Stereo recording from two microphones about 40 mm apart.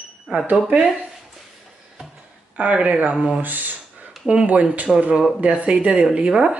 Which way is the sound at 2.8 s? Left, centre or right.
Right.